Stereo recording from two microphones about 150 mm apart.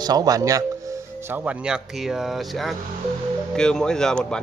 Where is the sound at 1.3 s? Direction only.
10° right (ahead or behind).